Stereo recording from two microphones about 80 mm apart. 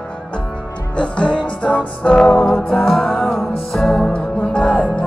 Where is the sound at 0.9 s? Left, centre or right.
Centre.